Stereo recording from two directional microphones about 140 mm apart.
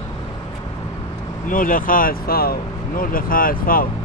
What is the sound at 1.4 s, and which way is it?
Speech, 75° left (ahead or behind).